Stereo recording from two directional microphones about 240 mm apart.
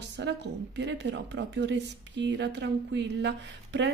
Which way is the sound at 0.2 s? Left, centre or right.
Right.